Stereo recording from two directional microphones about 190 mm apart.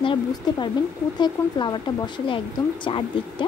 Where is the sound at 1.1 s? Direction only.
25° left (ahead or behind).